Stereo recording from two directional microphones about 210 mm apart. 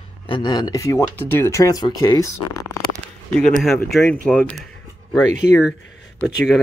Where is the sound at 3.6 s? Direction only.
Centre (ahead or behind).